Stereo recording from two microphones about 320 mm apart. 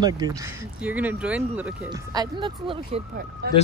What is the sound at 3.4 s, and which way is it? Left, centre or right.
Speech, right.